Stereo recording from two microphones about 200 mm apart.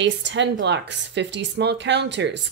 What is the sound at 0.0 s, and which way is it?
Speech, 65° right (ahead or behind).